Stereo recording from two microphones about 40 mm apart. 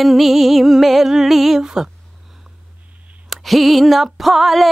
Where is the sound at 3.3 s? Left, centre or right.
Centre.